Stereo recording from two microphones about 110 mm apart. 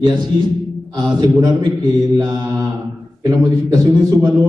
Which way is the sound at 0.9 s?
40° right (ahead or behind).